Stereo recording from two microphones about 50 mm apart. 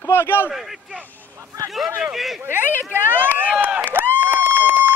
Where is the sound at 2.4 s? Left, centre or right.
Right.